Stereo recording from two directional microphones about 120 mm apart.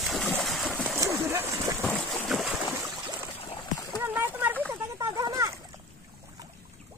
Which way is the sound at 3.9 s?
15° right (ahead or behind).